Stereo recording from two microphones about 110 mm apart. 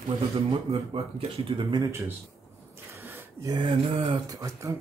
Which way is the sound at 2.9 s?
20° right (ahead or behind).